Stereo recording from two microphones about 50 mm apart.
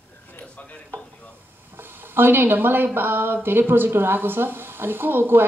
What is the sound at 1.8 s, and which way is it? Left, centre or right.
A woman's voice, right.